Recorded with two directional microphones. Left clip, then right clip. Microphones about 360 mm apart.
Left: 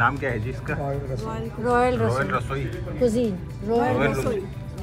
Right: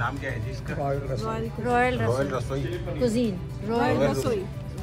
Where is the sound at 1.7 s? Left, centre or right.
Left.